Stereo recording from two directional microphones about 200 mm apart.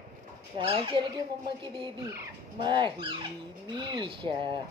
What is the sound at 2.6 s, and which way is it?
Speech, 25° right (ahead or behind).